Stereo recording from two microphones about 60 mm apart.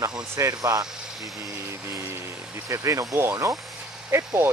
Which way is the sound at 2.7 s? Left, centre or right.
Right.